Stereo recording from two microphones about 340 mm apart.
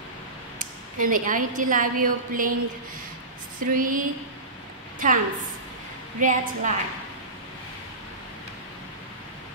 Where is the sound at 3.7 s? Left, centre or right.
Right.